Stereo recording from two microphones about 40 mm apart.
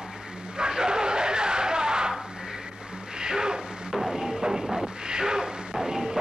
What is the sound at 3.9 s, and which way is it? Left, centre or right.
Music, centre.